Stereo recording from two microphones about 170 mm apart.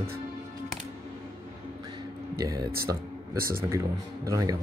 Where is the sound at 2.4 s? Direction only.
20° right (ahead or behind).